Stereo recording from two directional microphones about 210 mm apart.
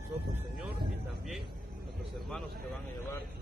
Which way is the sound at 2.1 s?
Centre (ahead or behind).